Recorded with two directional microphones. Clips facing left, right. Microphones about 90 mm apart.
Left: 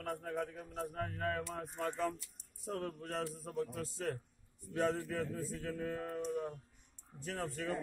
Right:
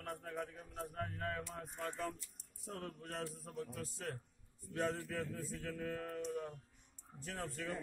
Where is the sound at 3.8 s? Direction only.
60° left (ahead or behind).